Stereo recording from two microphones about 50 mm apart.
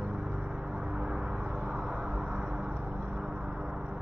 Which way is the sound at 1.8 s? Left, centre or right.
Centre.